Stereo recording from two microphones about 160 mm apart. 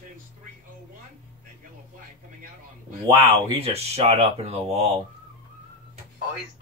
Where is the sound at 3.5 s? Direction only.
40° right (ahead or behind).